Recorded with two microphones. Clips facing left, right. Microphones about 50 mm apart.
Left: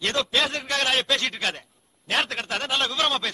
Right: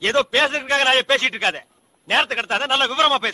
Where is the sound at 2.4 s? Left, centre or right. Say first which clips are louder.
Right 6 dB; right.